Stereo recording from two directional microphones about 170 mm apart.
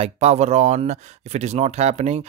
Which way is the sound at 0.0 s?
40° right (ahead or behind).